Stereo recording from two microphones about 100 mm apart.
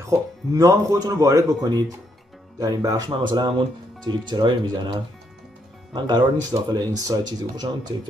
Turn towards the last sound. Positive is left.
turn(degrees=-45)  # may be behind; listen again after turning